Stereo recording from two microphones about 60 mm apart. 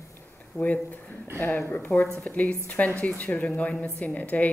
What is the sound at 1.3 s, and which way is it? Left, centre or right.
A woman's voice, left.